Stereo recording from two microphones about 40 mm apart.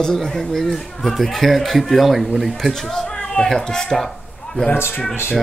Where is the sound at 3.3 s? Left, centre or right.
Centre.